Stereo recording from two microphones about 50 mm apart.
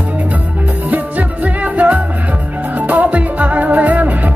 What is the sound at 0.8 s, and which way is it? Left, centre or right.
Music, right.